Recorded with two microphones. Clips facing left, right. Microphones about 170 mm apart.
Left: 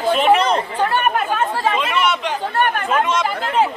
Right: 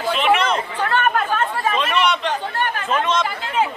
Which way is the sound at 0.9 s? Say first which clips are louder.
Left 1 dB; 10° left (ahead or behind).